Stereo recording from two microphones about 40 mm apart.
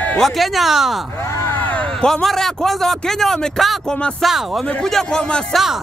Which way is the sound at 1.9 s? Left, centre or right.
Centre.